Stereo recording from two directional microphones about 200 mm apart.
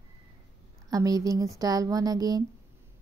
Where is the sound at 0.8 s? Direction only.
15° right (ahead or behind).